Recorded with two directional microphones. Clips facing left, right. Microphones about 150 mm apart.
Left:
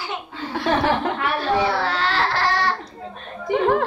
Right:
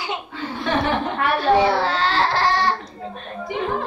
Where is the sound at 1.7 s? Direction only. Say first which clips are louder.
Right 2 dB; 30° right (ahead or behind).